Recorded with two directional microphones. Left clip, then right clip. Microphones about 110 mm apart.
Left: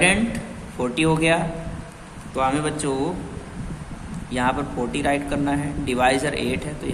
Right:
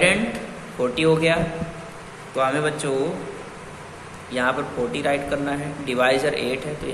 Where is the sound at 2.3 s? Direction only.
40° left (ahead or behind).